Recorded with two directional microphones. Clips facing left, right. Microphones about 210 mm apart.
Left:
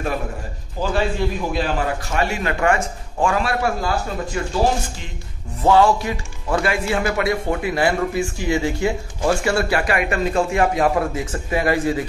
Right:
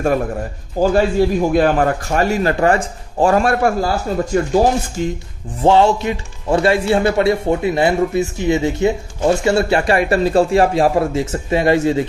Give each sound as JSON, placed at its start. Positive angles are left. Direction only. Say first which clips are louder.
{"t": 0.7, "sound": "a man's voice", "louder": "right 8 dB", "side_deg": -45}
{"t": 5.6, "sound": "speech", "louder": "right 3 dB", "side_deg": -25}